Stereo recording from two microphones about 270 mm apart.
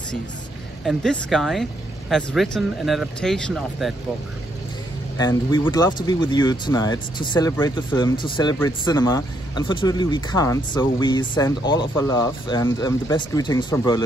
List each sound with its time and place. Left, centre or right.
0.8 s speech: centre
5.1 s speech: centre